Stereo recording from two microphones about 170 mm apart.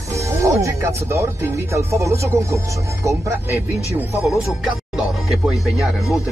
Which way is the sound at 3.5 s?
15° left (ahead or behind).